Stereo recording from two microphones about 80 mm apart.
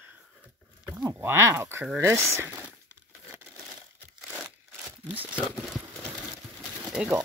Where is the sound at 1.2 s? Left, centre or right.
Right.